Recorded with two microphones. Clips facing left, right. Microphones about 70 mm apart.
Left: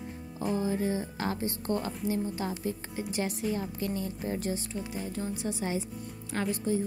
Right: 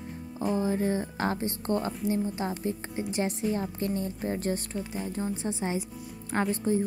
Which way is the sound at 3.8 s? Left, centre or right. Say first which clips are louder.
Right 3 dB; right.